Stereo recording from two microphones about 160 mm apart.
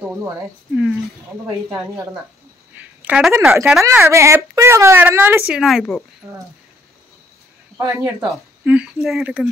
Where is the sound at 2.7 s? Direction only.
5° right (ahead or behind).